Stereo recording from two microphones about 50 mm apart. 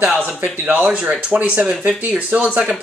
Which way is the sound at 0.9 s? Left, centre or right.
Centre.